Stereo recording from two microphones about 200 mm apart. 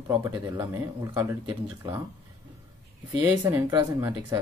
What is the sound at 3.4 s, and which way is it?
Speech, 15° right (ahead or behind).